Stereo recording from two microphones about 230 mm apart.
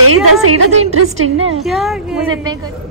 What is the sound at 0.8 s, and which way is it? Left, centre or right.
Speech, right.